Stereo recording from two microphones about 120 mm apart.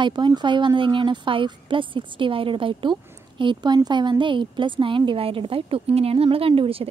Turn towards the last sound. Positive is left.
turn(degrees=-50)  # may be behind; listen again after turning